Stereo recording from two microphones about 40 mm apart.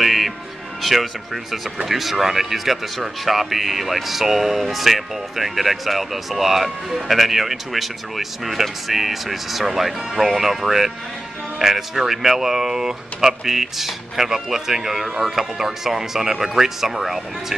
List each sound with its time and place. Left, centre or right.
0.0 s music: centre
0.8 s speech: centre